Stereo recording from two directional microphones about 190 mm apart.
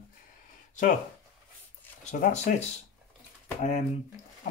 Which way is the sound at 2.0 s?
40° left (ahead or behind).